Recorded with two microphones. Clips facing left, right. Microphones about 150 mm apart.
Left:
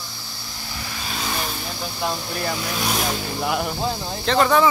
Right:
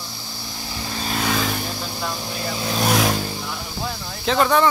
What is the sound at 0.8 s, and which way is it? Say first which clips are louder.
Vehicle: right 6 dB; 35° right (ahead or behind).